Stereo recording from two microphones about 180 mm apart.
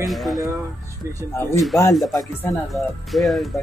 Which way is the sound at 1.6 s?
Centre (ahead or behind).